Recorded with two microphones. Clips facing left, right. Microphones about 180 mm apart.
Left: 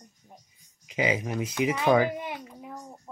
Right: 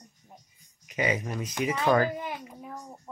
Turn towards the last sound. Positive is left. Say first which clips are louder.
# even
turn(degrees=15)  # may be behind; listen again after turning